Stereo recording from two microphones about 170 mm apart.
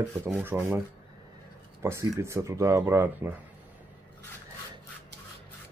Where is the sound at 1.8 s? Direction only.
15° right (ahead or behind).